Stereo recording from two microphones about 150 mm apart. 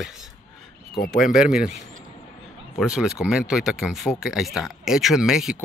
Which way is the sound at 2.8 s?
5° right (ahead or behind).